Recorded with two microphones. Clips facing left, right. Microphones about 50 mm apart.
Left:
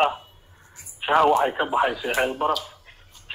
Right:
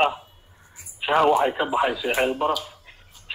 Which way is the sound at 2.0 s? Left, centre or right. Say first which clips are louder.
Right 1 dB; centre.